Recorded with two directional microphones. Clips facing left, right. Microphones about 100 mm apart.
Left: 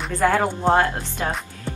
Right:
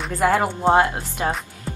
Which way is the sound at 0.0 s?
10° right (ahead or behind).